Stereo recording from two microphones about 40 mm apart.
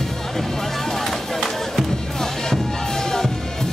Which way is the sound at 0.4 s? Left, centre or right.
Centre.